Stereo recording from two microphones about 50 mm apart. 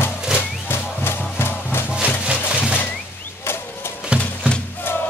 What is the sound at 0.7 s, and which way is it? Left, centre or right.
Music, left.